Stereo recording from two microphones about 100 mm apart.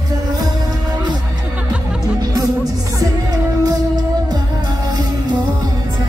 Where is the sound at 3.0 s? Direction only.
40° right (ahead or behind).